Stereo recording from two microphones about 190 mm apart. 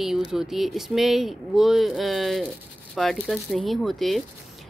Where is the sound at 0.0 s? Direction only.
Centre (ahead or behind).